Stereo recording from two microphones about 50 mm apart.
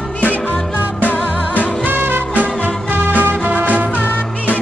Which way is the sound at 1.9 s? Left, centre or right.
Right.